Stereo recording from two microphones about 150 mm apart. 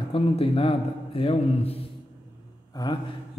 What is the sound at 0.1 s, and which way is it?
A man's voice, 40° left (ahead or behind).